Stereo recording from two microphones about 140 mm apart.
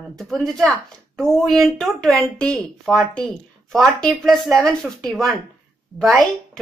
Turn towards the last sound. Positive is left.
turn(degrees=0)  # may be behind; listen again after turning